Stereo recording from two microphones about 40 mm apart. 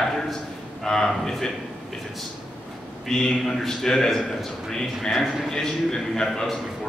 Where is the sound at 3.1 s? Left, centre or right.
Centre.